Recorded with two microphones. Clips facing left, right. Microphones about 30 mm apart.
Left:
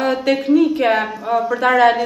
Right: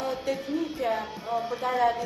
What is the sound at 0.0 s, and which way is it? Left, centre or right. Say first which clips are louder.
A woman's voice: left 12 dB; left.